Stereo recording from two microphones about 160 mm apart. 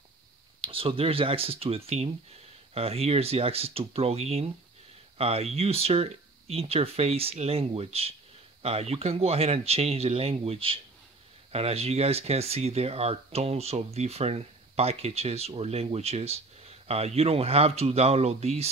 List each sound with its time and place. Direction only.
0.6 s speech: 35° right (ahead or behind)